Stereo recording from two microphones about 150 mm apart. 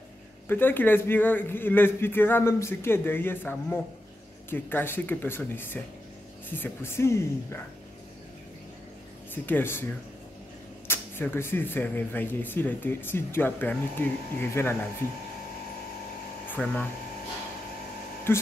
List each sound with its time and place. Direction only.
0.5 s speech: 15° left (ahead or behind)
9.3 s speech: 15° left (ahead or behind)
10.9 s speech: 15° left (ahead or behind)
16.4 s speech: 10° left (ahead or behind)
18.3 s speech: 15° left (ahead or behind)